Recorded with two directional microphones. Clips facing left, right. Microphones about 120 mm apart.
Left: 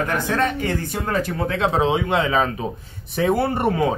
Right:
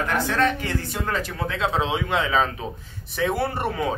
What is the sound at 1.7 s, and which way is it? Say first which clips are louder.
Speech: left 5 dB; 35° left (ahead or behind).